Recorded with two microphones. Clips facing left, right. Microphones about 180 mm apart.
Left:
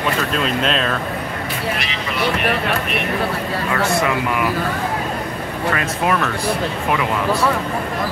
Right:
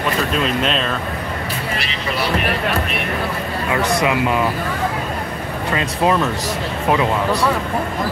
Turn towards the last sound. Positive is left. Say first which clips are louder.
# right 2 dB
turn(degrees=-25)  # may be behind; listen again after turning